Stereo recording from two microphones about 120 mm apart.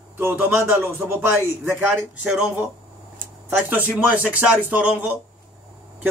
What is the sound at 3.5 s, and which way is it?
Speech, 15° right (ahead or behind).